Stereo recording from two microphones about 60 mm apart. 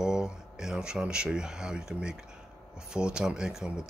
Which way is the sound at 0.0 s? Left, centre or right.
Centre.